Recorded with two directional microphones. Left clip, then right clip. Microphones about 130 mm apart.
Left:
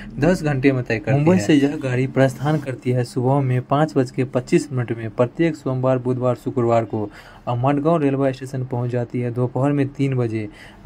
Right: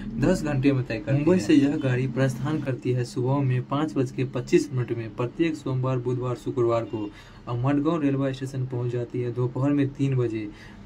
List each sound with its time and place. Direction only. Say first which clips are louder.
0.2 s a man's voice: left 6 dB; 25° left (ahead or behind)